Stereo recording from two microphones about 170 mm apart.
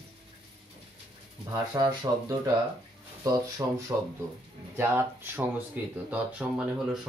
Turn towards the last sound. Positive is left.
turn(degrees=-5)  # may be behind; listen again after turning